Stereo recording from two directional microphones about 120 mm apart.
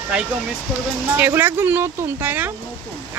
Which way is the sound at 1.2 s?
15° right (ahead or behind).